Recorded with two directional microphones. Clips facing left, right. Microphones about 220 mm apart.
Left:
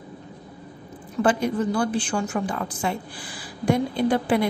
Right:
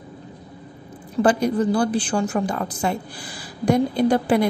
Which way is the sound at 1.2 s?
40° right (ahead or behind).